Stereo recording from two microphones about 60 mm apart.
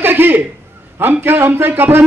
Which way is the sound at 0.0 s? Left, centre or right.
Right.